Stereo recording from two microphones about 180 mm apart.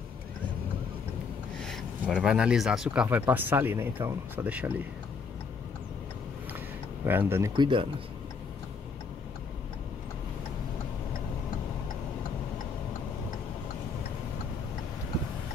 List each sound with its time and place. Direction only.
1.6 s speech: centre (ahead or behind)
7.1 s speech: 10° right (ahead or behind)
7.5 s speech: 25° right (ahead or behind)